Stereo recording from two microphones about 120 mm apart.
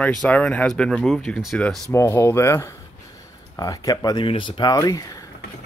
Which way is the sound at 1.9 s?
20° left (ahead or behind).